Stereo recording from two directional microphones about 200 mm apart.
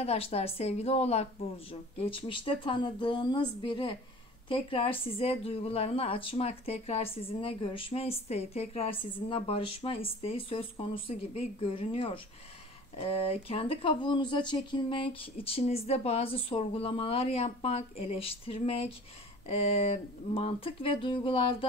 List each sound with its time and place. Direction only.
0.0 s a woman's voice: 30° left (ahead or behind)